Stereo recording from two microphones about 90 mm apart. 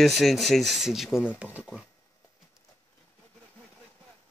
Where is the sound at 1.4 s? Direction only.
15° right (ahead or behind).